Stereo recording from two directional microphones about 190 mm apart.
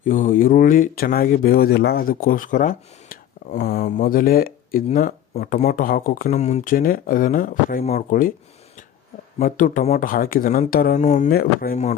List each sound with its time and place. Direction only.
0.0 s speech: 45° left (ahead or behind)
9.4 s speech: 45° left (ahead or behind)